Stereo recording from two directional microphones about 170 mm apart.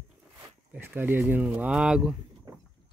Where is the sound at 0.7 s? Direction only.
10° right (ahead or behind).